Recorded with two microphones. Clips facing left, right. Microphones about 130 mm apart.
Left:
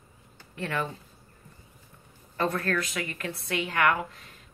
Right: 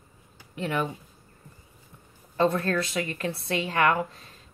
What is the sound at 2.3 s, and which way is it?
A woman's voice, 25° right (ahead or behind).